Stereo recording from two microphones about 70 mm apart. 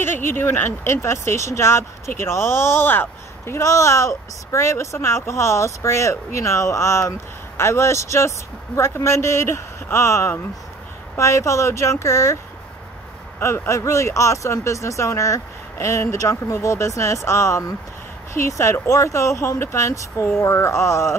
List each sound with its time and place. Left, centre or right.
0.0 s speech: left
13.4 s speech: left